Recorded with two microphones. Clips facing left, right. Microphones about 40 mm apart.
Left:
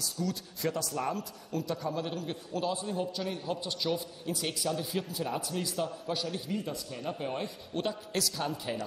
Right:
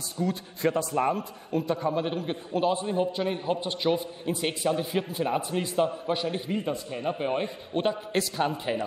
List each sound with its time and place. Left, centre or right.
0.0 s a man's voice: right